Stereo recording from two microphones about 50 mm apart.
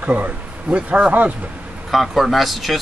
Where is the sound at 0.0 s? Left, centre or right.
Right.